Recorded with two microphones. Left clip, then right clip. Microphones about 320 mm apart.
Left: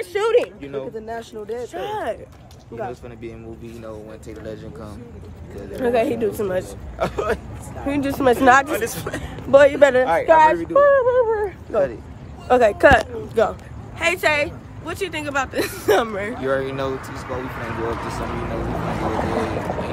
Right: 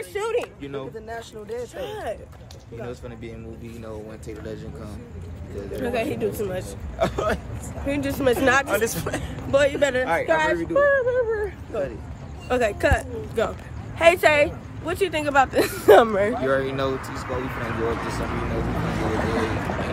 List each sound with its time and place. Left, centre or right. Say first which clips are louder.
0.0 s a sound: left 8 dB; left
0.6 s speech: left 4 dB; centre
1.0 s speech: left 5 dB; left
2.9 s speech: left 2 dB; centre
5.8 s speech: left 7 dB; centre
7.0 s speech: left 1 dB; centre
7.8 s speech: left 4 dB; centre
8.7 s a man's voice: right 1 dB; centre
9.2 s speech: left 8 dB; centre
13.9 s speech: right 3 dB; centre
19.0 s vehicle: left 2 dB; left